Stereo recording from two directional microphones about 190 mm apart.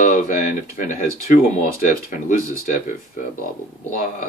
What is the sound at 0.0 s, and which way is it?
Speech, 40° left (ahead or behind).